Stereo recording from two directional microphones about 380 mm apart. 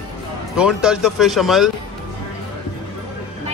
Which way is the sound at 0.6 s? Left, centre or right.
Centre.